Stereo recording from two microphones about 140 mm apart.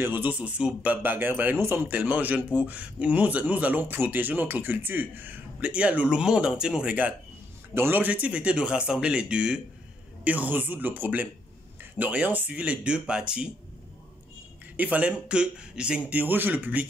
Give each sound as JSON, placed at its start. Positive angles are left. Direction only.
{"t": 0.0, "sound": "speech", "side_deg": -15}
{"t": 14.8, "sound": "speech", "side_deg": -10}